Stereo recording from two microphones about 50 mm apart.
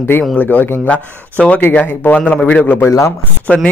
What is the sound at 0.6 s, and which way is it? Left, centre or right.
Speech, left.